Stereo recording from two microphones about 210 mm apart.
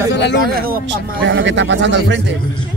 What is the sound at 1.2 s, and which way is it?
Speech, 60° right (ahead or behind).